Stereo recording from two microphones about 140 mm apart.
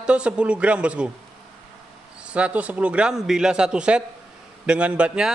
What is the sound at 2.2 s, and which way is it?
A man's voice, 10° right (ahead or behind).